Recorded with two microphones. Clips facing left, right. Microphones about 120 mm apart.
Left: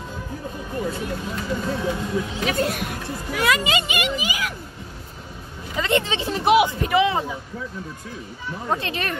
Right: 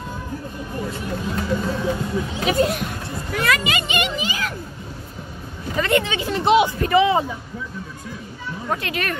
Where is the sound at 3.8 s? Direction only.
5° left (ahead or behind).